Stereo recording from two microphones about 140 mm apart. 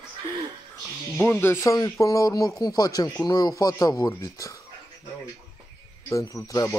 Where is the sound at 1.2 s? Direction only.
15° left (ahead or behind).